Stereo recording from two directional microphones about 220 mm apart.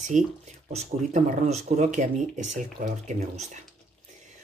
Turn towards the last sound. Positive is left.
turn(degrees=-35)  # may be behind; listen again after turning